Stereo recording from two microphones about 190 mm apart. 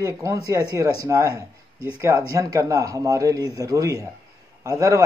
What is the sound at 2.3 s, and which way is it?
Speech, 20° right (ahead or behind).